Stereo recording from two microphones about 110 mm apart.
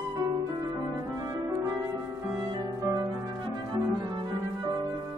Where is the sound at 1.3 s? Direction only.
30° right (ahead or behind).